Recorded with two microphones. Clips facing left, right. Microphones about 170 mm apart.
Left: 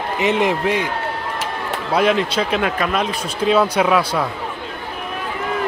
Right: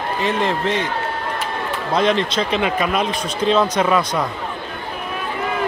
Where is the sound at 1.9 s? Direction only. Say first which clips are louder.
Left 1 dB; 5° left (ahead or behind).